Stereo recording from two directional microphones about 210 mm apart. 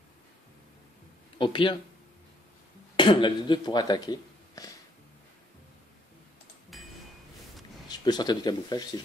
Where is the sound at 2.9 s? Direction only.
25° left (ahead or behind).